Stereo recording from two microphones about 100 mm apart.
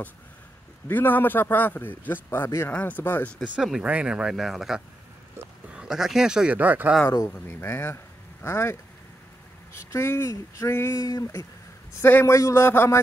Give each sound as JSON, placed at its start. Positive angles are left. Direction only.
{"t": 0.8, "sound": "a man's voice", "side_deg": 20}
{"t": 3.4, "sound": "speech", "side_deg": -5}
{"t": 7.2, "sound": "speech", "side_deg": 25}
{"t": 9.9, "sound": "a man's voice", "side_deg": 25}
{"t": 11.0, "sound": "speech", "side_deg": 40}
{"t": 12.0, "sound": "a man's voice", "side_deg": 25}